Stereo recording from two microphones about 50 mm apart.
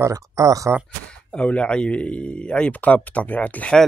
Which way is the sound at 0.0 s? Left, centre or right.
Right.